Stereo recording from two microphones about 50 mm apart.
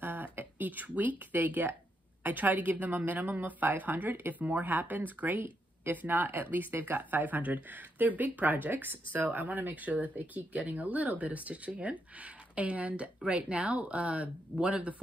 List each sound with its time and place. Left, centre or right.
0.0 s speech: right
6.7 s speech: right
7.0 s speech: right